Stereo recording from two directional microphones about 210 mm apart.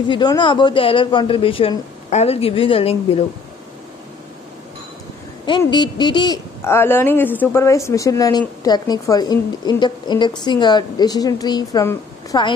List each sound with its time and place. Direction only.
0.1 s speech: 20° left (ahead or behind)
5.6 s speech: 20° left (ahead or behind)